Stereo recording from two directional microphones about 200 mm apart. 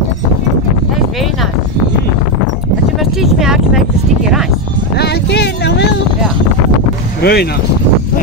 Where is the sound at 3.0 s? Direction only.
Centre (ahead or behind).